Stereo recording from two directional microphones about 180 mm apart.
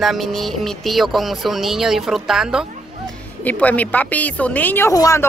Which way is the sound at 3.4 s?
10° left (ahead or behind).